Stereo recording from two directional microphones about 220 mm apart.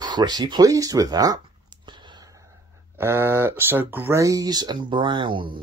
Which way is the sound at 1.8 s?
20° right (ahead or behind).